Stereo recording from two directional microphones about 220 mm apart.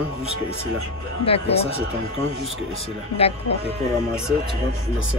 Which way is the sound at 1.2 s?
25° left (ahead or behind).